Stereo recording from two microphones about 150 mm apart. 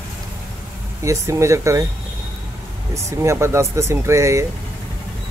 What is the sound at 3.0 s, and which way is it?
Speech, 20° right (ahead or behind).